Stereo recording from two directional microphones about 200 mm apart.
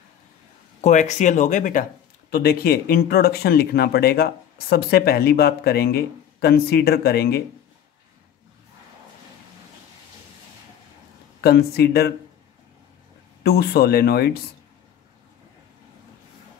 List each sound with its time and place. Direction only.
0.7 s speech: 35° left (ahead or behind)
2.3 s speech: 50° left (ahead or behind)
11.4 s speech: 50° left (ahead or behind)
13.4 s speech: 50° left (ahead or behind)